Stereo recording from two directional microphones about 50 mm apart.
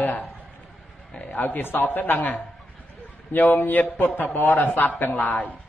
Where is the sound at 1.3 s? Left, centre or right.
Left.